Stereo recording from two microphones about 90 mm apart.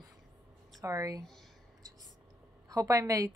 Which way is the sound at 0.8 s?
40° right (ahead or behind).